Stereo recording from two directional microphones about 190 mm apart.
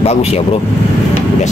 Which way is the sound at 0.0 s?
35° left (ahead or behind).